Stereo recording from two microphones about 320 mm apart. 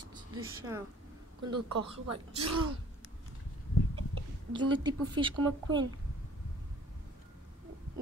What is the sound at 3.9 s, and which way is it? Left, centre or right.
Speech, centre.